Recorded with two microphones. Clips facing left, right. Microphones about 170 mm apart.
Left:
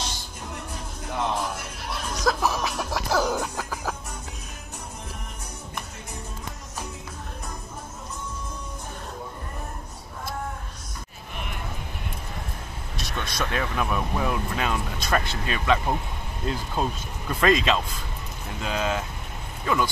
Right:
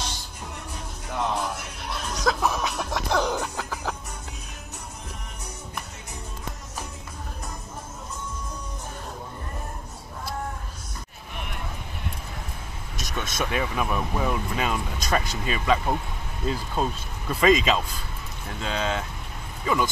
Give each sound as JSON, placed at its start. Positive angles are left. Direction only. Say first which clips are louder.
{"t": 1.0, "sound": "music", "louder": "even", "side_deg": 0}
{"t": 13.1, "sound": "speech", "louder": "right 1 dB", "side_deg": -5}